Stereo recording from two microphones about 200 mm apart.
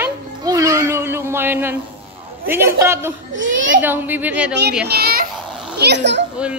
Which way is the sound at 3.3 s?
70° right (ahead or behind).